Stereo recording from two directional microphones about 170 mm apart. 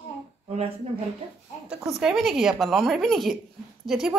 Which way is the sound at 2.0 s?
Centre (ahead or behind).